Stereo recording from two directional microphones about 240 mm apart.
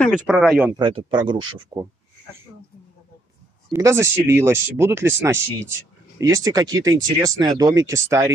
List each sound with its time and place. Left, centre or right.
0.3 s speech: centre
0.7 s speech: centre
3.7 s speech: centre